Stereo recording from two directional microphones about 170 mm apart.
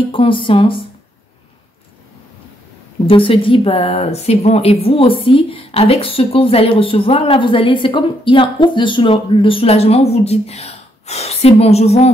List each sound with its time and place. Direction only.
0.1 s speech: 30° left (ahead or behind)
3.1 s speech: 30° left (ahead or behind)